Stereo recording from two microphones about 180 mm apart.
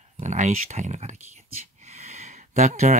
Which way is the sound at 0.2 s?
40° right (ahead or behind).